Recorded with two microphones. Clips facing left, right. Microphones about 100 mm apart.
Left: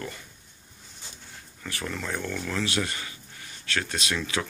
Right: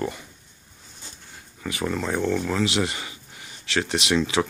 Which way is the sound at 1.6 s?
15° right (ahead or behind).